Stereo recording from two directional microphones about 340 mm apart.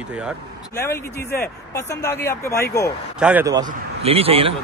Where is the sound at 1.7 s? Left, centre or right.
Centre.